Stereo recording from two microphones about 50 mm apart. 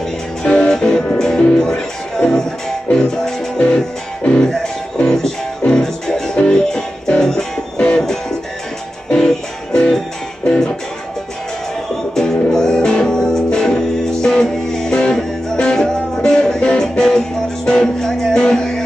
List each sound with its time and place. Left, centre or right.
0.4 s music: centre
1.6 s speech: centre
3.5 s music: left
7.7 s music: left
8.0 s music: centre
12.2 s music: centre